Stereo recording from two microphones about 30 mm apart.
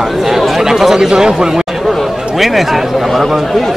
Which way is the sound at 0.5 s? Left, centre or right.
Centre.